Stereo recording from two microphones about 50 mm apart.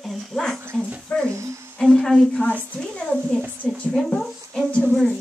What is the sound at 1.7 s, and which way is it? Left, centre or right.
Speech, centre.